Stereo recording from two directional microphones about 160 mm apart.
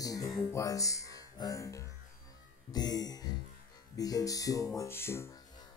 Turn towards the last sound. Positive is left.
turn(degrees=20)  # may be behind; listen again after turning